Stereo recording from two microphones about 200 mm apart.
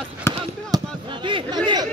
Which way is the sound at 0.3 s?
15° left (ahead or behind).